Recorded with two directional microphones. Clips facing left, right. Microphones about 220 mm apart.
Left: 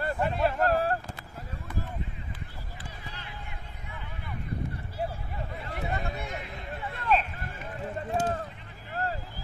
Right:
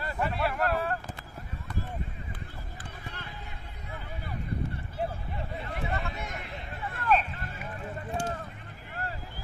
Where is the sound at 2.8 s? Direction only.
55° right (ahead or behind).